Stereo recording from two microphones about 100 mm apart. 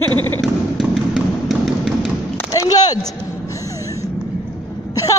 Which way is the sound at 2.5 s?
40° left (ahead or behind).